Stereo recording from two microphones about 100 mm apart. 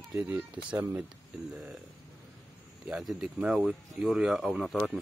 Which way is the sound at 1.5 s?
5° right (ahead or behind).